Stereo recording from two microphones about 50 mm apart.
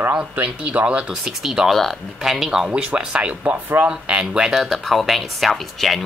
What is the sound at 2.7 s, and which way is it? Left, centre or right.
Speech, right.